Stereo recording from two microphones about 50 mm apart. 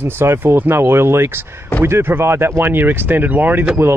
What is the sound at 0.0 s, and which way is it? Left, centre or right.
Speech, right.